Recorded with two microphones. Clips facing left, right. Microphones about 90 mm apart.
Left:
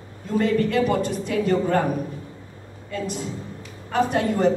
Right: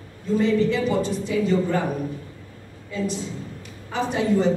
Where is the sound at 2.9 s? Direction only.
55° left (ahead or behind).